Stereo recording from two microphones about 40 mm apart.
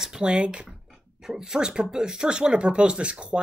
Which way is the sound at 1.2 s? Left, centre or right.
Centre.